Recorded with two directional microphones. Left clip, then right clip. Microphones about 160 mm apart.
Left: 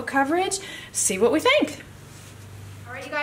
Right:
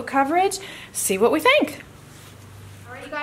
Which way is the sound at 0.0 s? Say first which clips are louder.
Right 3 dB; 20° right (ahead or behind).